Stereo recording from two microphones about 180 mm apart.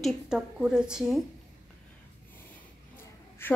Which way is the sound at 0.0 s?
5° right (ahead or behind).